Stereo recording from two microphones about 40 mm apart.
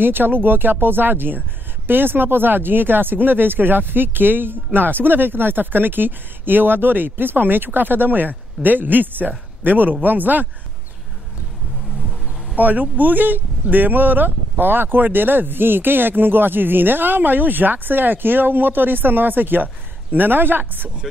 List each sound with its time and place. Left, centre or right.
0.0 s speech: right
12.5 s speech: right